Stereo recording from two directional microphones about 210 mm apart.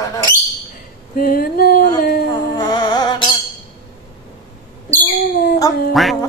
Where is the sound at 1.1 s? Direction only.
45° left (ahead or behind).